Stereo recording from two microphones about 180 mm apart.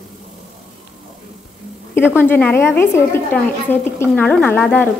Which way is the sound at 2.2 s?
10° left (ahead or behind).